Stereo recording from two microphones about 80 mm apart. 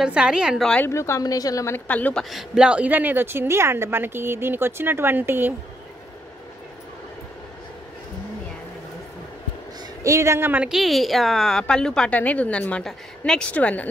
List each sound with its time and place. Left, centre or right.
0.0 s a woman's voice: centre
0.8 s speech: left
1.2 s speech: left
1.9 s a woman's voice: left
2.1 s a woman's voice: centre; by 5.5 s right
10.0 s speech: right
10.7 s a woman's voice: centre